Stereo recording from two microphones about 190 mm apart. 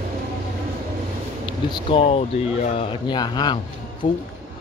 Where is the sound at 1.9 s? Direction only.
30° left (ahead or behind).